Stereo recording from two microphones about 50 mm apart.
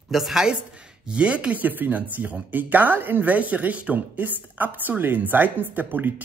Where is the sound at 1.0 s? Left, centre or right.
Right.